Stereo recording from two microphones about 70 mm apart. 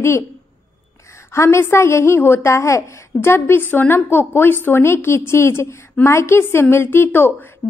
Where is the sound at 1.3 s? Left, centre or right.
Left.